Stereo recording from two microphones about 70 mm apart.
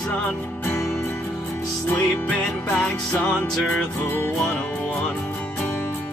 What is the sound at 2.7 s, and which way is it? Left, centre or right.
Music, centre.